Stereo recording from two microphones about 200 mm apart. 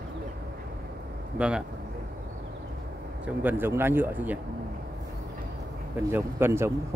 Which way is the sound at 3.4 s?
10° right (ahead or behind).